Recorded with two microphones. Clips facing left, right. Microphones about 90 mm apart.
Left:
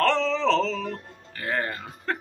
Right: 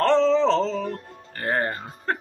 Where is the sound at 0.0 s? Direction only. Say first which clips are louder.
Right 4 dB; 30° right (ahead or behind).